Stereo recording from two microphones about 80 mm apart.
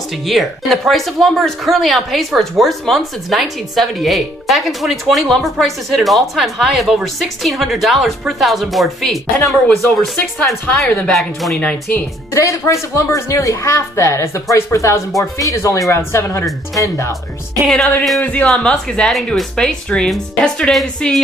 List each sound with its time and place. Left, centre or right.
0.3 s speech: centre
12.4 s speech: left
17.6 s speech: centre
18.2 s speech: centre